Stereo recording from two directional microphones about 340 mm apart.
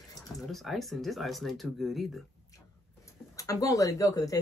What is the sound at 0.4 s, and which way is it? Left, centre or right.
Speech, centre.